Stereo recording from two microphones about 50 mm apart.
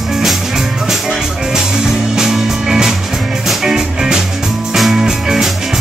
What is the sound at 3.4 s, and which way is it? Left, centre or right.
Music, centre.